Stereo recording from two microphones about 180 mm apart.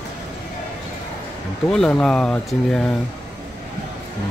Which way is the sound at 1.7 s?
5° left (ahead or behind).